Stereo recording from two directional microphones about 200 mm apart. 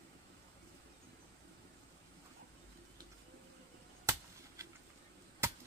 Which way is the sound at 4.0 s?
15° right (ahead or behind).